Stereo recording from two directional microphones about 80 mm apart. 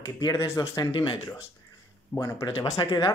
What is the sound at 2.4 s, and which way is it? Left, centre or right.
Speech, left.